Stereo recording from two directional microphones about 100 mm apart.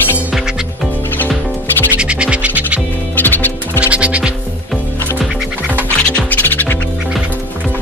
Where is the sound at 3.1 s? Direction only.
20° left (ahead or behind).